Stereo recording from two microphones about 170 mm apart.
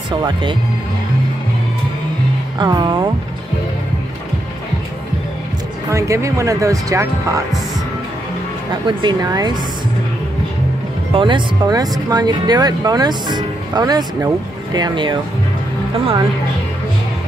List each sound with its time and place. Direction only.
0.2 s speech: 30° right (ahead or behind)
2.6 s speech: 25° right (ahead or behind)
5.9 s speech: 20° right (ahead or behind)
8.8 s speech: 25° right (ahead or behind)
11.1 s speech: 30° right (ahead or behind)